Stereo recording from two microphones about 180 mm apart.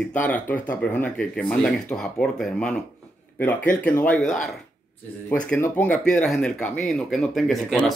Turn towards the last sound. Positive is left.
turn(degrees=0)  # may be behind; listen again after turning